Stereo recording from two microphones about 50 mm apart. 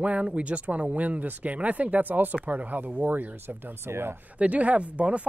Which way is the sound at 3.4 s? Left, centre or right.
Right.